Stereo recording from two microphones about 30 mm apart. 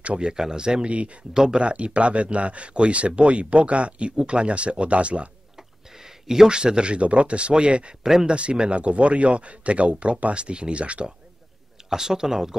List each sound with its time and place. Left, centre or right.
0.2 s speech: right
0.8 s speech: right
1.3 s speech: right
1.6 s speech: right
5.6 s speech: centre; by 7.9 s right
8.0 s speech: centre
8.3 s speech: right
11.9 s speech: centre